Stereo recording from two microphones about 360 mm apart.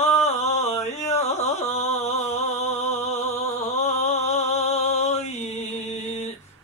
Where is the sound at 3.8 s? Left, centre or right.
Centre.